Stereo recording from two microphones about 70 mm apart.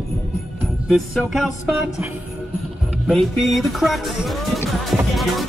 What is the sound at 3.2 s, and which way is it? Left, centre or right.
Speech, centre.